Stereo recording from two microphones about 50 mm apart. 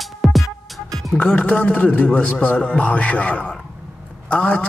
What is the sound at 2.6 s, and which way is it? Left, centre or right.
A man's voice, left.